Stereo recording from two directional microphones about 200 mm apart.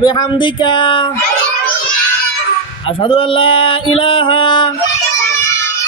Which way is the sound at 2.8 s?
25° left (ahead or behind).